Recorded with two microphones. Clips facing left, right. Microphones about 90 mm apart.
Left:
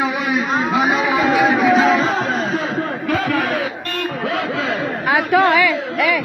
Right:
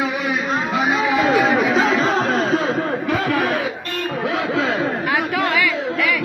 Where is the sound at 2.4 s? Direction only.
35° right (ahead or behind).